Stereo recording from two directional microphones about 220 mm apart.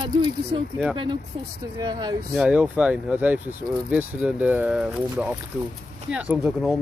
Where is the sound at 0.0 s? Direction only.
20° right (ahead or behind).